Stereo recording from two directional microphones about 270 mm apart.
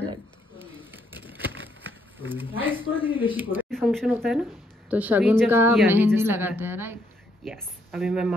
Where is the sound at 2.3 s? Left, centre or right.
Centre.